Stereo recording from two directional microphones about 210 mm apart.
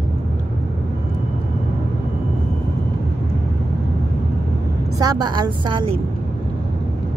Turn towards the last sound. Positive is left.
turn(degrees=-20)  # may be behind; listen again after turning